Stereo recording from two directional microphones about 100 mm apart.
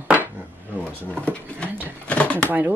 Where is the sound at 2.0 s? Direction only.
10° left (ahead or behind).